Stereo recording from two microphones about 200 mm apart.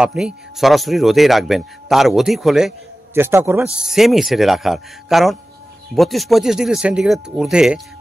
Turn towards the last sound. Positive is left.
turn(degrees=-5)  # may be behind; listen again after turning